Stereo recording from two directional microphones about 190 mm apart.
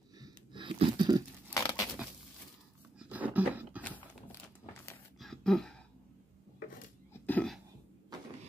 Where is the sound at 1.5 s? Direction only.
20° left (ahead or behind).